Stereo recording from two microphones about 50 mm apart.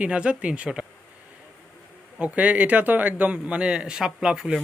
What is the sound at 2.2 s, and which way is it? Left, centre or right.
A man's voice, right.